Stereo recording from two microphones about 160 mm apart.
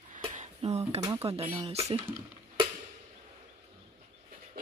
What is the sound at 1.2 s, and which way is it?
Speech, 40° right (ahead or behind).